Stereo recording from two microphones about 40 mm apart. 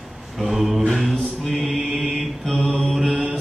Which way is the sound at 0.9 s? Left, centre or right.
Centre.